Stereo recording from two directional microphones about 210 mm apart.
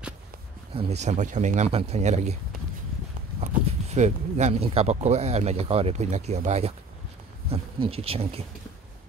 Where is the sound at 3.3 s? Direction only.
35° right (ahead or behind).